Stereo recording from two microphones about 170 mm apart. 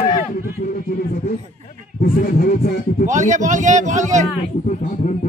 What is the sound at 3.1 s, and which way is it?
A man's voice, 45° right (ahead or behind).